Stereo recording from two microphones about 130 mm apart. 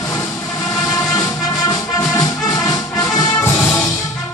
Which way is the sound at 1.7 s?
25° left (ahead or behind).